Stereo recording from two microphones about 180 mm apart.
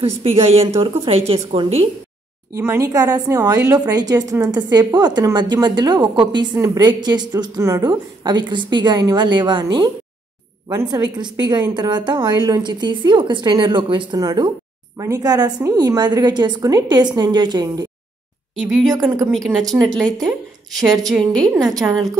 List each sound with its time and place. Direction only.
0.0 s a woman's voice: 35° right (ahead or behind)
2.5 s a woman's voice: 15° right (ahead or behind)
18.6 s a woman's voice: centre (ahead or behind)
21.5 s a woman's voice: 20° right (ahead or behind)